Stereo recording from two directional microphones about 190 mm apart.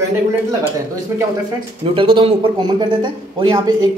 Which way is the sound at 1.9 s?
30° right (ahead or behind).